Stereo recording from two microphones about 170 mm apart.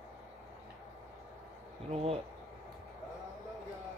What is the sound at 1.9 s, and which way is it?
Speech, 35° right (ahead or behind).